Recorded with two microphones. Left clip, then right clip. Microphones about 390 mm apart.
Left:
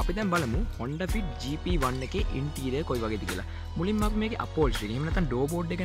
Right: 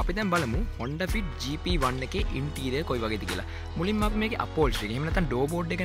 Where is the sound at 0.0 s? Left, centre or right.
Centre.